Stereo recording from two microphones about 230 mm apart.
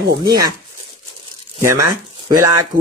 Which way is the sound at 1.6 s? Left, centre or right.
Centre.